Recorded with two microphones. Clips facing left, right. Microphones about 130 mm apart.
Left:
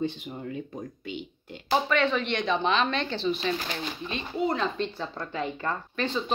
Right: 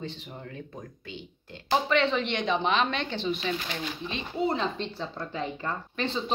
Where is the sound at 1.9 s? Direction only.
25° right (ahead or behind).